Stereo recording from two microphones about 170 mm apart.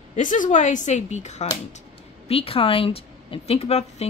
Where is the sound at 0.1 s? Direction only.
50° left (ahead or behind).